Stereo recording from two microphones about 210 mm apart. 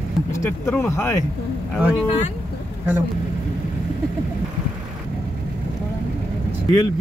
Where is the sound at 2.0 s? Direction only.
35° left (ahead or behind).